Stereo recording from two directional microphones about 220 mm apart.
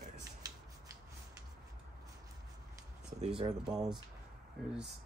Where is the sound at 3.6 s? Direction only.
Centre (ahead or behind).